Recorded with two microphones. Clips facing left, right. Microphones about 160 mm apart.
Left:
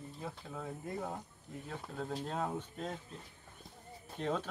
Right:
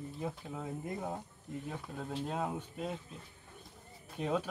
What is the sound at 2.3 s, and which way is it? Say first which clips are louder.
Speech: right 1 dB; 10° right (ahead or behind).